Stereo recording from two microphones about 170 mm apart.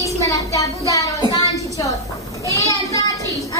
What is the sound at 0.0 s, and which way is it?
Child singing, 20° left (ahead or behind).